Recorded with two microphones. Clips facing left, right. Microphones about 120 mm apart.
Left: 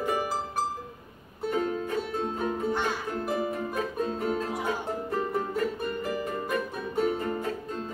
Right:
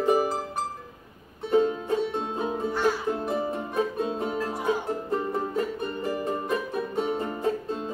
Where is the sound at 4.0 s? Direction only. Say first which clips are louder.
Right 1 dB; 20° right (ahead or behind).